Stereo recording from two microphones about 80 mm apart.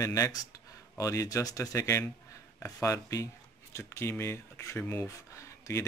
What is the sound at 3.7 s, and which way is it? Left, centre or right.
A man's voice, left.